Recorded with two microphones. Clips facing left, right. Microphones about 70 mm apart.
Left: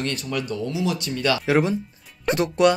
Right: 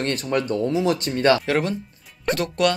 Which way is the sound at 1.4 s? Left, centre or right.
Centre.